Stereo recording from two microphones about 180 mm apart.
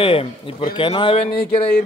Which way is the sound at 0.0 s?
30° left (ahead or behind).